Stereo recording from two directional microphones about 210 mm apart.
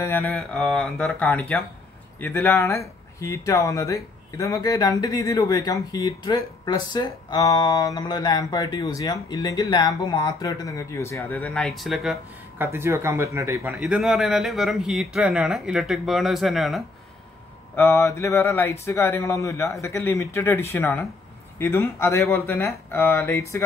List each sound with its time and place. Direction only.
0.0 s speech: 10° left (ahead or behind)
12.6 s speech: 10° right (ahead or behind)
13.7 s speech: centre (ahead or behind)
17.7 s speech: 10° left (ahead or behind)